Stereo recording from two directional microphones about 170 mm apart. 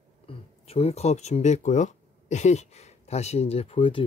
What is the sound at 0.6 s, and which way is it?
Speech, 35° left (ahead or behind).